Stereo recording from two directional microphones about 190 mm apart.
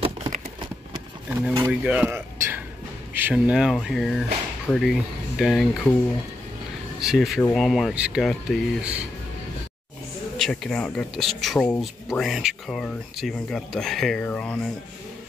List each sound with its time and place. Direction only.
0.0 s a sound: 30° right (ahead or behind)
1.7 s speech: 5° right (ahead or behind)
7.0 s speech: centre (ahead or behind)
10.3 s speech: centre (ahead or behind)